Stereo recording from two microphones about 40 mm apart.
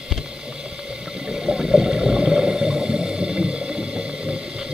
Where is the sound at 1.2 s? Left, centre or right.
Centre.